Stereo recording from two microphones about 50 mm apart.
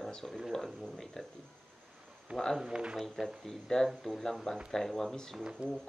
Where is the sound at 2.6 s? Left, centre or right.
Centre.